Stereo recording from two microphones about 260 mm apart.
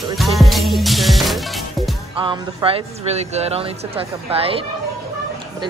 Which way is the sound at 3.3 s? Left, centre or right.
Right.